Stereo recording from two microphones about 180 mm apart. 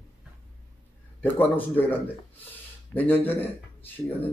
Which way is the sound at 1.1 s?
10° left (ahead or behind).